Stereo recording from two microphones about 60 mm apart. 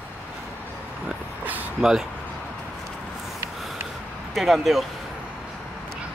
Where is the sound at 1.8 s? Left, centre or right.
Centre.